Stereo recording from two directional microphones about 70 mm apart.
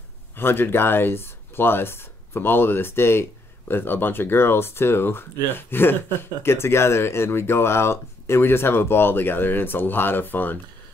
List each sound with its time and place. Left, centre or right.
0.4 s speech: left